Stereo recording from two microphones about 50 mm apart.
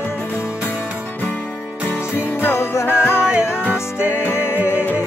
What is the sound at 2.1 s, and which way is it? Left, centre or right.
Music, left.